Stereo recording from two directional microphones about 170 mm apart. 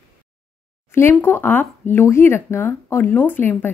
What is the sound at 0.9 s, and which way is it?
A woman's voice, 15° left (ahead or behind).